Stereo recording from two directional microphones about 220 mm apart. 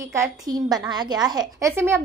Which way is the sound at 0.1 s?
15° right (ahead or behind).